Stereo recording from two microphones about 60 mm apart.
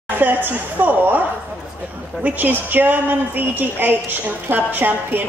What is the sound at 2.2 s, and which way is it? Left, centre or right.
A woman's voice, right.